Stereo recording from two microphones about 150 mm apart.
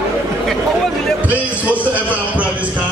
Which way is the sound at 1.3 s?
10° right (ahead or behind).